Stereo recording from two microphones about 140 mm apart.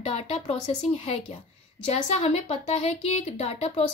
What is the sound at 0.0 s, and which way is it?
A woman's voice, 45° left (ahead or behind).